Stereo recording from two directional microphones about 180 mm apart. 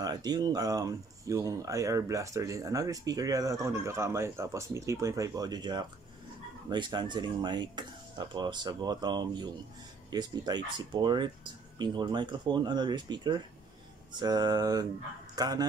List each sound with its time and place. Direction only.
0.0 s speech: 20° right (ahead or behind)